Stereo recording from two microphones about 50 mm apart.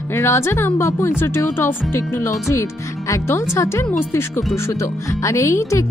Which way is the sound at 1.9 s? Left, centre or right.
Left.